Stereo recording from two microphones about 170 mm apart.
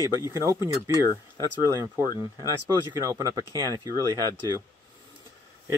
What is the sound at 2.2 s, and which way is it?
Speech, 20° right (ahead or behind).